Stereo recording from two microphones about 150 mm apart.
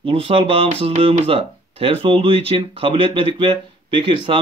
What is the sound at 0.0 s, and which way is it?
Speech, 40° right (ahead or behind).